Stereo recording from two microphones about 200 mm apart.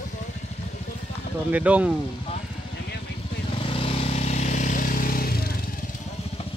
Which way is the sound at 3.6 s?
25° left (ahead or behind).